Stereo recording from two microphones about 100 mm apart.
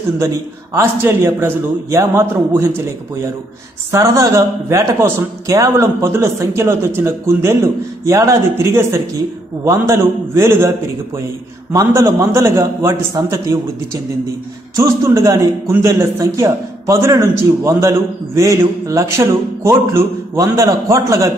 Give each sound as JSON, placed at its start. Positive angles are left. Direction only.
{"t": 0.7, "sound": "a man's voice", "side_deg": -25}
{"t": 3.9, "sound": "a man's voice", "side_deg": -35}
{"t": 11.7, "sound": "a man's voice", "side_deg": -30}
{"t": 14.8, "sound": "a man's voice", "side_deg": -35}